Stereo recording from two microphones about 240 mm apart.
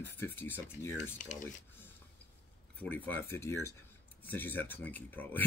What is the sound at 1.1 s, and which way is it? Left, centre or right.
Speech, left.